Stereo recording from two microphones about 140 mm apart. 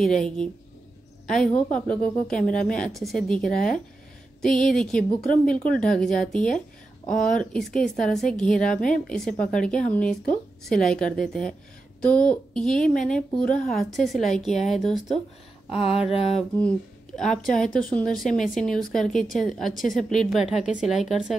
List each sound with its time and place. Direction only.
0.0 s a woman's voice: 5° left (ahead or behind)
16.1 s mantra: 45° left (ahead or behind)
16.3 s a woman's voice: 5° left (ahead or behind)